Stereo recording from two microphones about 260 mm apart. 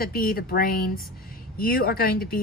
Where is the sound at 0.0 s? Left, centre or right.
Left.